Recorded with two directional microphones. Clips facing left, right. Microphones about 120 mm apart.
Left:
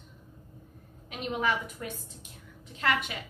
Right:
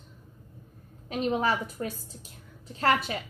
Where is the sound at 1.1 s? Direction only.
35° right (ahead or behind).